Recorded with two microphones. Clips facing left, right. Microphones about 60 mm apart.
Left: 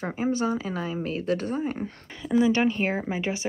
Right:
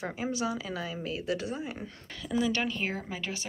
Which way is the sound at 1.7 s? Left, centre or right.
Left.